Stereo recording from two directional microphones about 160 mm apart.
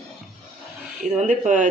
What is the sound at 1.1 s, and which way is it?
Speech, 50° right (ahead or behind).